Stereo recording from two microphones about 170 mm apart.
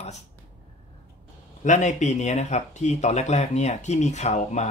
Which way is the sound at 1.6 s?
45° left (ahead or behind).